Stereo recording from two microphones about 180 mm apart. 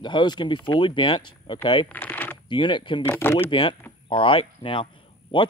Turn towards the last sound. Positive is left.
turn(degrees=30)  # may be behind; listen again after turning